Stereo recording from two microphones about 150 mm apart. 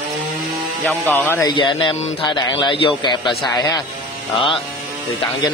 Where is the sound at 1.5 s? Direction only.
30° left (ahead or behind).